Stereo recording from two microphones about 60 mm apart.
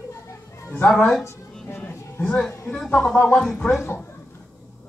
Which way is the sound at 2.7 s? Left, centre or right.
Centre.